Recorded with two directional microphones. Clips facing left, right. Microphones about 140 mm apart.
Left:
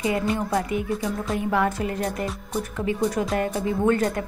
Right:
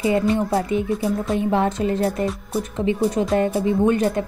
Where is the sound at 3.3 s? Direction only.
25° right (ahead or behind).